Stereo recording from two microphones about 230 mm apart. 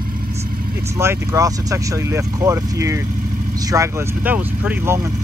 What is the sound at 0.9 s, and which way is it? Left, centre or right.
Speech, centre.